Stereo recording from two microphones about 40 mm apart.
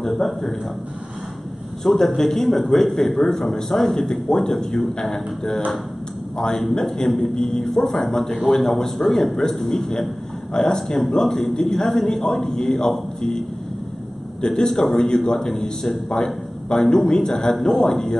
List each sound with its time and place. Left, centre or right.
0.2 s a man's voice: centre
1.8 s a man's voice: centre
14.4 s a man's voice: centre